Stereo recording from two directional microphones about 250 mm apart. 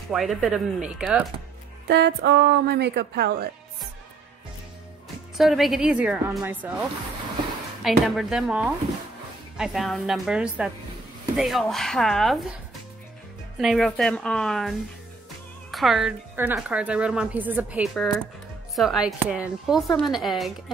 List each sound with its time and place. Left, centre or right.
0.1 s a woman's voice: centre
1.9 s speech: right
5.4 s a woman's voice: centre
13.6 s a woman's voice: centre